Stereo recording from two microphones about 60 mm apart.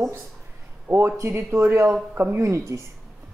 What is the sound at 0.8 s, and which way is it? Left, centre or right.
Speech, right.